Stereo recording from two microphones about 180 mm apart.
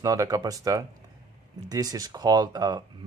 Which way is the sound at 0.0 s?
20° right (ahead or behind).